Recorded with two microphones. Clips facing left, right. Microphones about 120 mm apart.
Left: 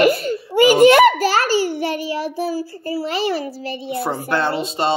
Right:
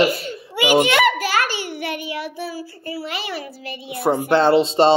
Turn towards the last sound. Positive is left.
turn(degrees=-25)  # may be behind; listen again after turning